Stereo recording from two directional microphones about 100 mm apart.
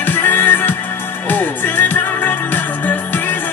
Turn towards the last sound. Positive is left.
turn(degrees=20)  # may be behind; listen again after turning